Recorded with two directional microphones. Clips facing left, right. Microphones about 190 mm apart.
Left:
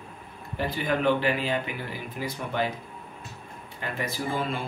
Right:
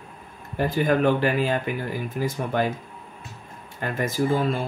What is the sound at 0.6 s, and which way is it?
Speech, 45° right (ahead or behind).